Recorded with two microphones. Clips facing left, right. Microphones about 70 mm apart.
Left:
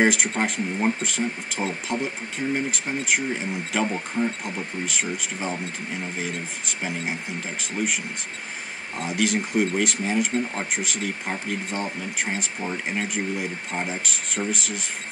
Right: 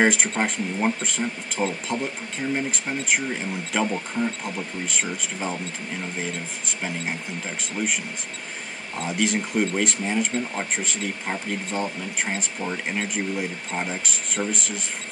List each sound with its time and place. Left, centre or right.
0.0 s speech: centre
8.9 s speech: centre